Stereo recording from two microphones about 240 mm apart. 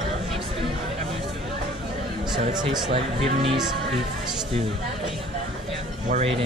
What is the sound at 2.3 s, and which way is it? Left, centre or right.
Speech, centre.